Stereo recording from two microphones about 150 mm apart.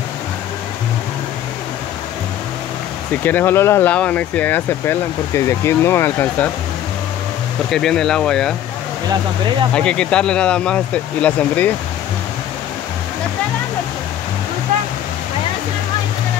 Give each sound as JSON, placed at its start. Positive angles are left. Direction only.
{"t": 3.3, "sound": "speech", "side_deg": 15}
{"t": 7.7, "sound": "speech", "side_deg": 5}
{"t": 9.8, "sound": "speech", "side_deg": 5}